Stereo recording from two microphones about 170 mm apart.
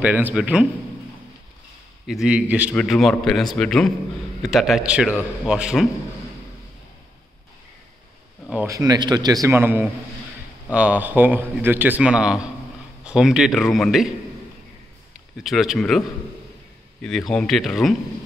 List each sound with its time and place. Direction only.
0.0 s a man's voice: 10° right (ahead or behind)
2.0 s a man's voice: 5° right (ahead or behind)
2.7 s a man's voice: centre (ahead or behind)
8.6 s a man's voice: 20° right (ahead or behind); by 14.1 s centre (ahead or behind)
15.4 s a man's voice: centre (ahead or behind)
17.3 s a man's voice: 5° left (ahead or behind)